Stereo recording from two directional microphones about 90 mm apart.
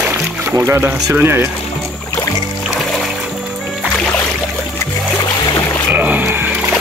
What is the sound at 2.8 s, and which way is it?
Music, centre (ahead or behind).